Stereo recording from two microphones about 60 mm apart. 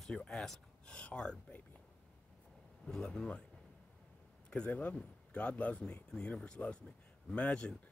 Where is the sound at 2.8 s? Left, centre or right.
Centre.